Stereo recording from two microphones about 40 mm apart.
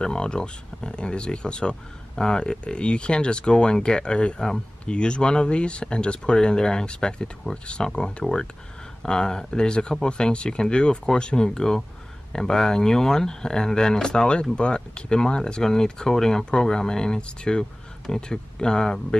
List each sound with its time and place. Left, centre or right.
0.0 s speech: left